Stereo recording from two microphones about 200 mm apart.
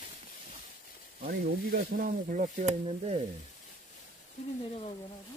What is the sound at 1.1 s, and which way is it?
Speech, 50° right (ahead or behind).